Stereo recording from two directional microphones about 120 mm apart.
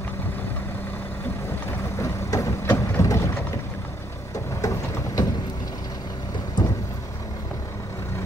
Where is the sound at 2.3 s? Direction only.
25° left (ahead or behind).